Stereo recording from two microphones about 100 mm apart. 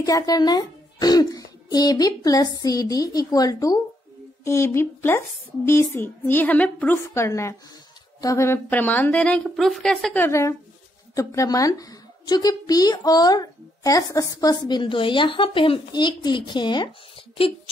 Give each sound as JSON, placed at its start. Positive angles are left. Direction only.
{"t": 0.0, "sound": "a child's voice", "side_deg": 40}
{"t": 4.5, "sound": "a woman's voice", "side_deg": 25}
{"t": 7.0, "sound": "a woman's voice", "side_deg": 30}
{"t": 8.6, "sound": "a woman's voice", "side_deg": 15}
{"t": 11.1, "sound": "a child's voice", "side_deg": 35}
{"t": 14.7, "sound": "speech", "side_deg": 55}